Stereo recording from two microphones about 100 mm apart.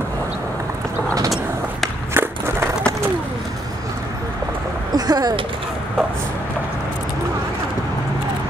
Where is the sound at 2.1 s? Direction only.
25° right (ahead or behind).